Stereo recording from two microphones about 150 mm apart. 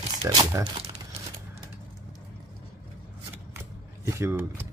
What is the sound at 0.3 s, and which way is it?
Speech, 25° right (ahead or behind).